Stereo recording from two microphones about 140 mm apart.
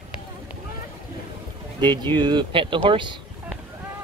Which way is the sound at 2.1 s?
35° right (ahead or behind).